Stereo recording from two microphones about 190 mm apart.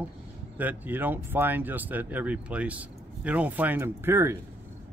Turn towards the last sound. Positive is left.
turn(degrees=-15)  # may be behind; listen again after turning